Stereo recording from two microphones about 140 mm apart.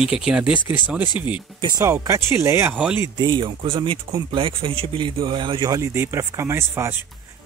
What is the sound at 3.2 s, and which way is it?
A man's voice, 35° right (ahead or behind).